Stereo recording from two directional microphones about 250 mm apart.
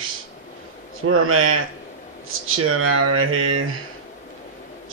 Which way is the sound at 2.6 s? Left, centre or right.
Right.